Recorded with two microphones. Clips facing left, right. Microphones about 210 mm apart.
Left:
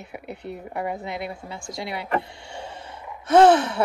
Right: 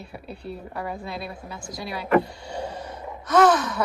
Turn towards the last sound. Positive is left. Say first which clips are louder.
# left 3 dB
turn(degrees=25)  # may be behind; listen again after turning